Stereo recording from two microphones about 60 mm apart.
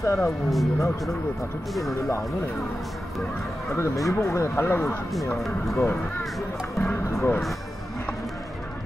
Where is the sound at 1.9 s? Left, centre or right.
Left.